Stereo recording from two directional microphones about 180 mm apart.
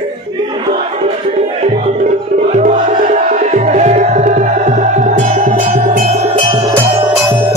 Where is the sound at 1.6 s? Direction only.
40° right (ahead or behind).